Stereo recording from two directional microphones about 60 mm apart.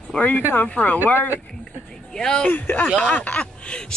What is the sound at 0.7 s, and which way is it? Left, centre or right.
Speech, left.